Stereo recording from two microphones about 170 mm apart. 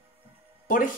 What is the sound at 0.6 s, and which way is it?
Music, 55° left (ahead or behind).